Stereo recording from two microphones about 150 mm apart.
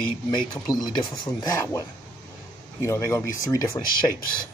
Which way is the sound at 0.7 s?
30° left (ahead or behind).